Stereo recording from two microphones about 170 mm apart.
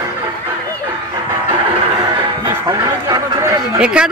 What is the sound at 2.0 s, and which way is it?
Music, 20° right (ahead or behind).